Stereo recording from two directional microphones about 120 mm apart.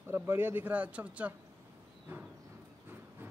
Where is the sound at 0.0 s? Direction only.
20° right (ahead or behind).